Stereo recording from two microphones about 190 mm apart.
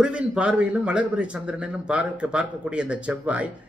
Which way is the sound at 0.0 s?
5° right (ahead or behind).